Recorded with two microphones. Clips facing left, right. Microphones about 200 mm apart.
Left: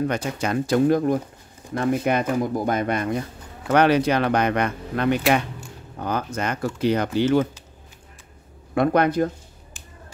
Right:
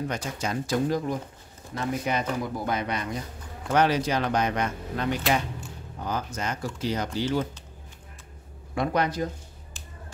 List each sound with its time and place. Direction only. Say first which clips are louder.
0.0 s speech: left 6 dB; 60° left (ahead or behind)
8.7 s speech: left 7 dB; 55° left (ahead or behind)